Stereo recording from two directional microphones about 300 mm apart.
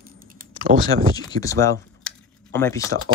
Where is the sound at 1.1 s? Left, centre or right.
Centre.